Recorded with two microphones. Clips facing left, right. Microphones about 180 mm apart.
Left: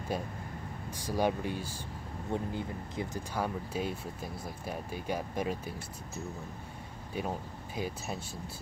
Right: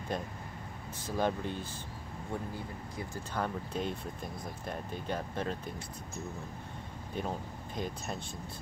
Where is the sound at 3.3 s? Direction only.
5° left (ahead or behind).